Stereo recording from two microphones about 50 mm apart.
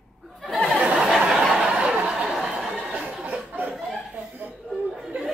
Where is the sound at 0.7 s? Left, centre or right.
Right.